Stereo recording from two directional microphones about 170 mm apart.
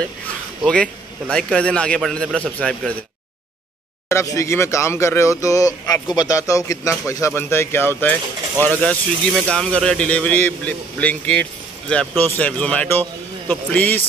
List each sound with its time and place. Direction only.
0.7 s a man's voice: 5° left (ahead or behind)
4.1 s speech: 15° left (ahead or behind)